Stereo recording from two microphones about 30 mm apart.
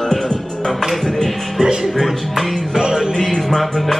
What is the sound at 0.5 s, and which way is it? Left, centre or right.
Music, centre.